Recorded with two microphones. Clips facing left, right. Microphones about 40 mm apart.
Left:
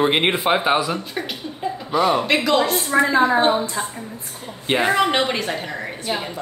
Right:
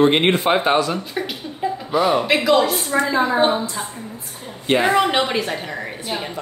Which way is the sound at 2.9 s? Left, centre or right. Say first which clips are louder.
Left 3 dB; left.